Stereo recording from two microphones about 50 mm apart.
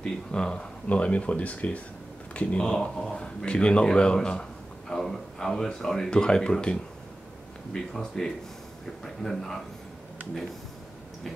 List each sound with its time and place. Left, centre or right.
0.0 s a sound: centre
0.8 s speech: left
2.6 s speech: centre